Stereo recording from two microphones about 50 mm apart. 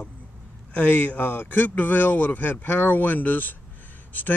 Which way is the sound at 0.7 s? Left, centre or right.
Left.